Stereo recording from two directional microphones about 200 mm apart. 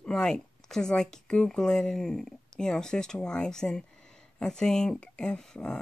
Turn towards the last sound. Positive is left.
turn(degrees=5)  # may be behind; listen again after turning